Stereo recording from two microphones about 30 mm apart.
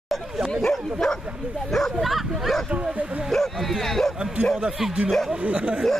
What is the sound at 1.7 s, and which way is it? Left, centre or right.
Speech, centre.